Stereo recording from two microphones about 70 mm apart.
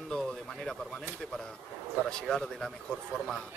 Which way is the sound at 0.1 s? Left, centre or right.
Centre.